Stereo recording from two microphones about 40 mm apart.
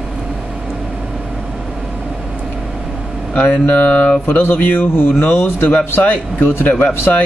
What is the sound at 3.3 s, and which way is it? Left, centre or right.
Speech, left.